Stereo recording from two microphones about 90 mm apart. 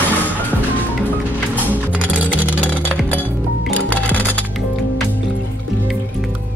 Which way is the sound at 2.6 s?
15° right (ahead or behind).